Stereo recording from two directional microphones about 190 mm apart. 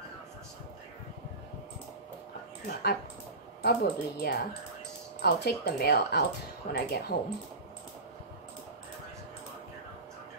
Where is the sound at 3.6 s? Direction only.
55° left (ahead or behind).